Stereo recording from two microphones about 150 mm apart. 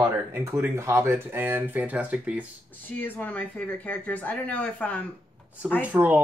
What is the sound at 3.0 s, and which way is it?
Speech, 10° left (ahead or behind).